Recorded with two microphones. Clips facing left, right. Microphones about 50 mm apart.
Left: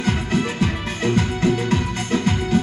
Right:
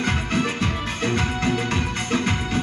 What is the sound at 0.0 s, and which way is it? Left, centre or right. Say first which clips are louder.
Music: left 1 dB; right.